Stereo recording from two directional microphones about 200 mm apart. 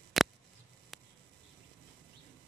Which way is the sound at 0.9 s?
Centre (ahead or behind).